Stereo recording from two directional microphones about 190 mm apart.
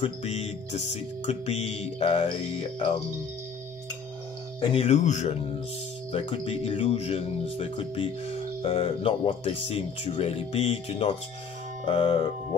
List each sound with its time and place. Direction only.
0.0 s music: 35° left (ahead or behind)
4.6 s music: 30° left (ahead or behind)